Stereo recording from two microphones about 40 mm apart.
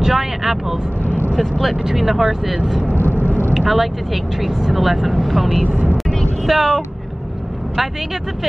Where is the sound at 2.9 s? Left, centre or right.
Left.